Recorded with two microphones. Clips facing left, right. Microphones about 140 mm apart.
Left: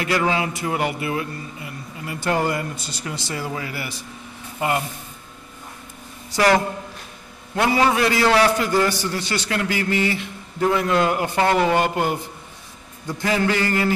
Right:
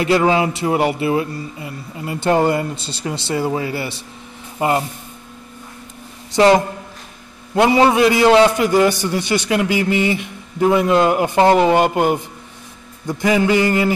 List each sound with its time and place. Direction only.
0.0 s speech: 25° right (ahead or behind)
6.3 s a man's voice: 25° right (ahead or behind)
13.2 s a man's voice: 15° right (ahead or behind)